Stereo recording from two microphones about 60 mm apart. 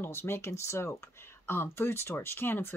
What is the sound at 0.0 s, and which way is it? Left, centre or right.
Speech, left.